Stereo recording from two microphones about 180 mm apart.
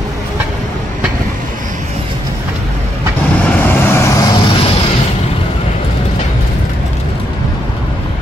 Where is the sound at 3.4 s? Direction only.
10° left (ahead or behind).